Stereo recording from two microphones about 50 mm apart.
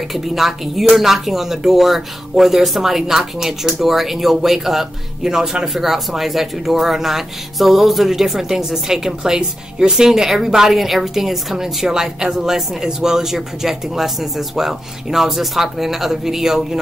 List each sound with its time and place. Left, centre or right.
0.1 s speech: centre